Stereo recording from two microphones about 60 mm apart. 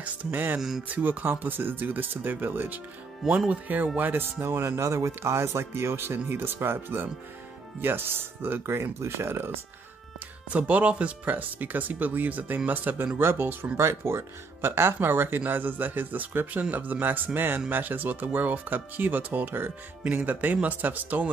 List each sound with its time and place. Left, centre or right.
0.0 s speech: right
0.6 s speech: centre
0.8 s speech: right
4.4 s speech: right
10.5 s speech: right
13.2 s speech: right